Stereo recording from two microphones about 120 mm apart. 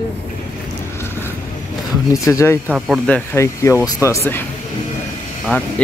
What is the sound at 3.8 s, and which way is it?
Speech, 25° left (ahead or behind).